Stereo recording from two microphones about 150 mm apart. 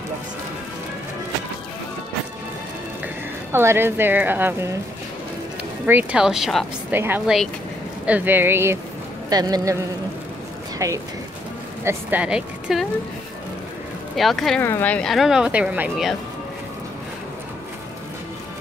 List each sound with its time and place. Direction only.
3.5 s speech: 15° right (ahead or behind)
5.9 s speech: 10° right (ahead or behind)
6.9 s speech: 15° right (ahead or behind)
9.3 s speech: 25° right (ahead or behind)
10.8 s speech: 20° right (ahead or behind)
14.1 s speech: centre (ahead or behind)
14.6 s speech: 15° left (ahead or behind); by 16.1 s 10° right (ahead or behind)